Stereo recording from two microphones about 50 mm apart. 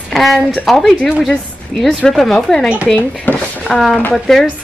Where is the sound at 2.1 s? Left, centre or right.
Centre.